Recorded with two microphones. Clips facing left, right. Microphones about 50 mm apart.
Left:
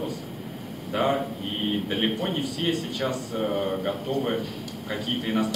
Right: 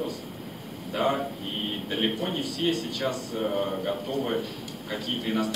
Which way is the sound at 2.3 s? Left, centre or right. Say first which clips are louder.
Left 1 dB; centre.